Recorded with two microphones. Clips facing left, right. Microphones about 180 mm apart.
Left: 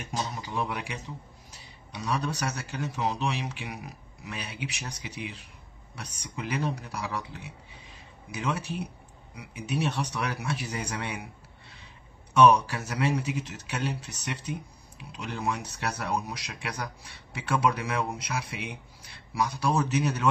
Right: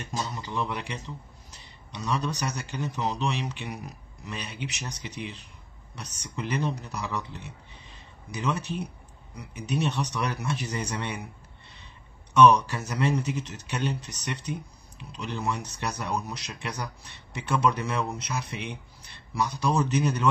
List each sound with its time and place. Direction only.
0.0 s speech: 10° left (ahead or behind)
12.4 s speech: 10° left (ahead or behind)